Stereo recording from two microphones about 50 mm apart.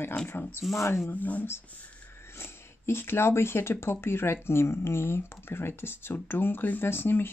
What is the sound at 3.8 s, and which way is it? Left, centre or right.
Speech, left.